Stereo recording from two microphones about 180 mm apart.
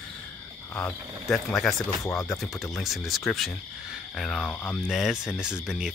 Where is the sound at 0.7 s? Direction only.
10° left (ahead or behind).